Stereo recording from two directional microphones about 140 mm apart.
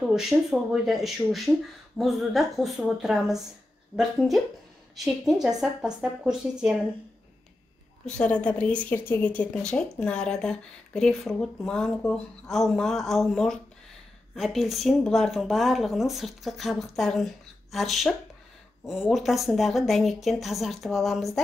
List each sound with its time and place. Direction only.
0.0 s speech: 5° right (ahead or behind)
4.9 s speech: centre (ahead or behind)
8.0 s a woman's voice: 10° left (ahead or behind)